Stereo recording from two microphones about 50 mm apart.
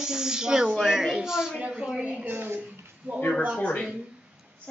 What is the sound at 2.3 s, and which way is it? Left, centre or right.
Speech, right.